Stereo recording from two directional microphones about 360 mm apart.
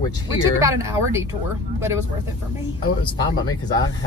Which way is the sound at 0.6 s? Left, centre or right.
Centre.